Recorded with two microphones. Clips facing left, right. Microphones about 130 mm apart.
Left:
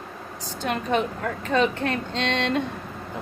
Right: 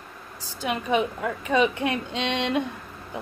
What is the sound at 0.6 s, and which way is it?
A woman's voice, 10° right (ahead or behind).